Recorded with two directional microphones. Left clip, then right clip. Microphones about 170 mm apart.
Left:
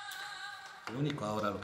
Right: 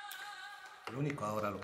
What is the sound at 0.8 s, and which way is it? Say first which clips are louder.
Speech: left 1 dB; 50° right (ahead or behind).